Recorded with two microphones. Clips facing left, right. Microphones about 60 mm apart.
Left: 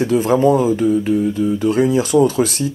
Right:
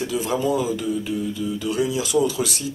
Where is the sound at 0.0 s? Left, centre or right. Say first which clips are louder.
Left 9 dB; left.